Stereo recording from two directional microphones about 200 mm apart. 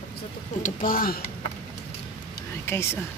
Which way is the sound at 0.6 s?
45° left (ahead or behind).